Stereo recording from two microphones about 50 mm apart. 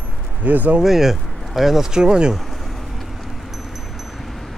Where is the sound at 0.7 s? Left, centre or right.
Centre.